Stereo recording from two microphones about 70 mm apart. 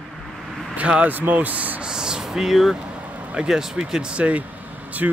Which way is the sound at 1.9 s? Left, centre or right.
Centre.